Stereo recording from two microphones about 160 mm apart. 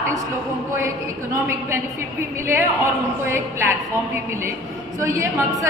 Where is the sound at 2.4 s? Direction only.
15° right (ahead or behind).